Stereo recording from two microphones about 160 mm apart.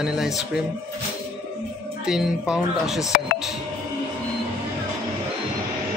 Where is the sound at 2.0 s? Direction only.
5° right (ahead or behind).